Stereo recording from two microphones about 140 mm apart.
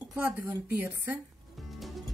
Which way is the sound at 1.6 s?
Centre (ahead or behind).